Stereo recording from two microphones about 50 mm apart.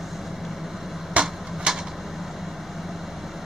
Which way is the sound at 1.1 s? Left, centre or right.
Right.